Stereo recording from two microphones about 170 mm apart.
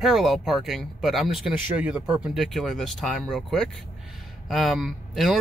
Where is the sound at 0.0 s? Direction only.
Centre (ahead or behind).